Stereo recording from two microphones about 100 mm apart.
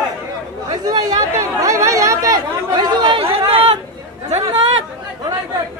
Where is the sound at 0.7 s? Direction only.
40° right (ahead or behind); by 3.8 s 65° right (ahead or behind).